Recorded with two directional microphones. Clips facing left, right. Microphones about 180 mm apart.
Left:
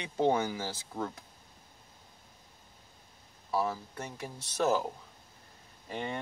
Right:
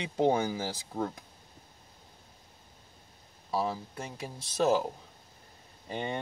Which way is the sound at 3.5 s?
10° right (ahead or behind).